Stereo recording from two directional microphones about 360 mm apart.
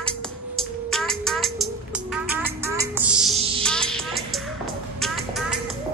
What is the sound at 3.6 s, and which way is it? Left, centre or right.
Music, centre.